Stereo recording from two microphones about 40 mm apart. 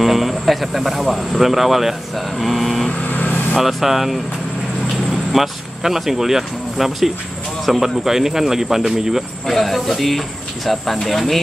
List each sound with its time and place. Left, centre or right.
0.0 s speech: centre
3.1 s vehicle: left
3.5 s speech: centre
9.5 s speech: centre